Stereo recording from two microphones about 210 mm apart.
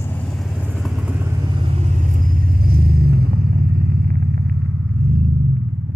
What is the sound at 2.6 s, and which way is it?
Vehicle, 45° right (ahead or behind).